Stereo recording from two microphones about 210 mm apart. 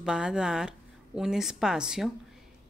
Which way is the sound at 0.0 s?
5° right (ahead or behind).